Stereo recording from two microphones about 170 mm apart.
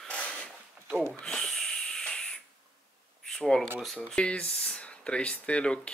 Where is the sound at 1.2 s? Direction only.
5° left (ahead or behind).